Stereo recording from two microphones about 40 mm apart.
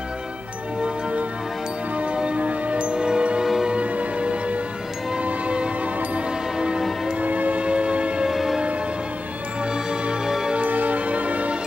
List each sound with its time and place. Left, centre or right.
0.7 s music: right
2.1 s a sound: right
3.0 s music: centre
3.6 s music: right
5.2 s train: right
7.2 s music: right
8.3 s a sound: centre
9.8 s music: centre
10.5 s music: right